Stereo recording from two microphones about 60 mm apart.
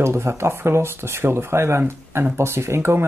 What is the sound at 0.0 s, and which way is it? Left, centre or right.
Speech, right.